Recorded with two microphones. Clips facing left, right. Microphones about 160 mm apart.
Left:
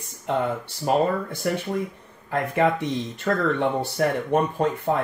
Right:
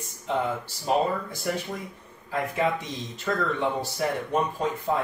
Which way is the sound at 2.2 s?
60° left (ahead or behind).